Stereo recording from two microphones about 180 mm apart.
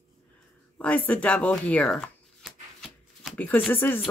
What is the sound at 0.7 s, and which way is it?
Shuffling cards, 10° left (ahead or behind).